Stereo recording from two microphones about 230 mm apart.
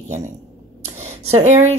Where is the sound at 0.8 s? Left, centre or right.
Right.